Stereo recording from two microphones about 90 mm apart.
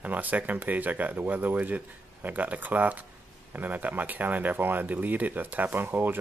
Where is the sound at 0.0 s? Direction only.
20° right (ahead or behind).